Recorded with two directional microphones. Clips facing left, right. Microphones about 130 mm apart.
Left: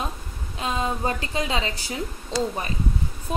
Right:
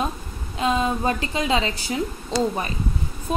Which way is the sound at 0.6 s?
25° right (ahead or behind).